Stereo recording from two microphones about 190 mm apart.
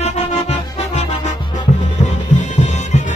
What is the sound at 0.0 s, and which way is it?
Music, 35° left (ahead or behind).